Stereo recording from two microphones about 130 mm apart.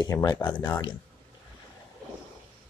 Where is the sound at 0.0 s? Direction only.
30° left (ahead or behind).